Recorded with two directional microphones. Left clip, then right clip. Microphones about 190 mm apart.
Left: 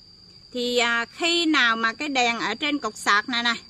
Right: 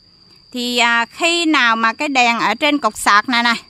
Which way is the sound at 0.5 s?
55° right (ahead or behind).